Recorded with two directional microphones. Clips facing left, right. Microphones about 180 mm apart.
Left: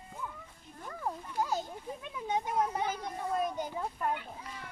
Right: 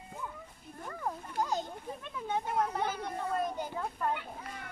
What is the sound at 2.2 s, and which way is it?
Speech, 15° left (ahead or behind).